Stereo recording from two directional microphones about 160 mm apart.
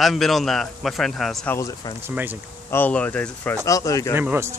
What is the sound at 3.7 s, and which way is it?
Speech, 20° left (ahead or behind).